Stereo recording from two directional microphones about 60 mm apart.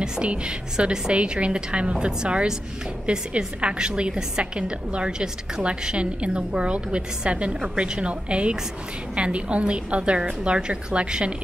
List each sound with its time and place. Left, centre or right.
0.0 s a woman's voice: centre